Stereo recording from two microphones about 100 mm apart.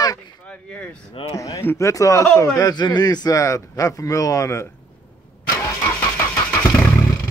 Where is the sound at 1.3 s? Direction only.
30° left (ahead or behind).